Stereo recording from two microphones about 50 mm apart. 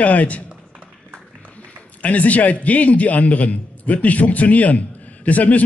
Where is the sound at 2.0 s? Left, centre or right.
Left.